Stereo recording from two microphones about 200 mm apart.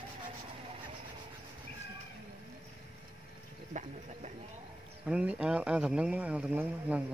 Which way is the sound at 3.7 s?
35° right (ahead or behind).